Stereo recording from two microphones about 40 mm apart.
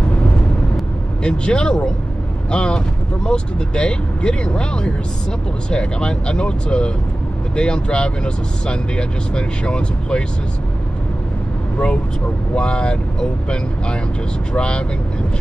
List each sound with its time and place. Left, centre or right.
1.2 s speech: left
12.5 s speech: left